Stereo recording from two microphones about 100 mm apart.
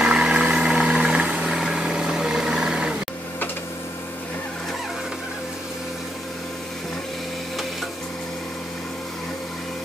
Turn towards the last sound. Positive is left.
turn(degrees=0)  # may be behind; listen again after turning